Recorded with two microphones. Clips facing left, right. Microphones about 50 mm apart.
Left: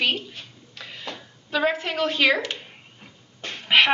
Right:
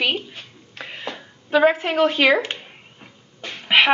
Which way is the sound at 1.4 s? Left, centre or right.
Right.